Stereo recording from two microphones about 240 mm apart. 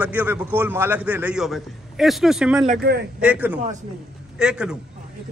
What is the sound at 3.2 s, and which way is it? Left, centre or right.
A man's voice, centre.